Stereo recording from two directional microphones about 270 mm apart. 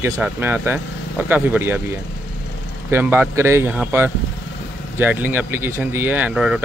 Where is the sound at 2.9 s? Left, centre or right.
Centre.